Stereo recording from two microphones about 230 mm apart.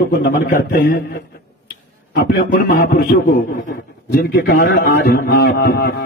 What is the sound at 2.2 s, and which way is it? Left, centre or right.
A man's voice, left.